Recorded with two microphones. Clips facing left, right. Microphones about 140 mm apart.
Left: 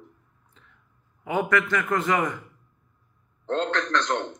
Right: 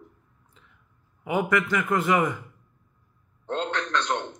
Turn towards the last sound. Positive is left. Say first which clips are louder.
# left 2 dB
turn(degrees=-15)  # may be behind; listen again after turning